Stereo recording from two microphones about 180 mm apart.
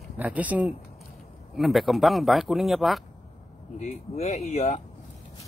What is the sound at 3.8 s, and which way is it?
Speech, 35° left (ahead or behind).